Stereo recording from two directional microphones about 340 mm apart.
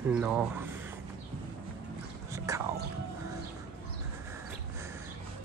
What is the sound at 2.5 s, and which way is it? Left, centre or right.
Music, centre.